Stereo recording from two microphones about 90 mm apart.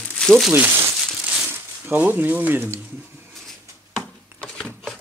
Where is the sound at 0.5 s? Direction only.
20° right (ahead or behind).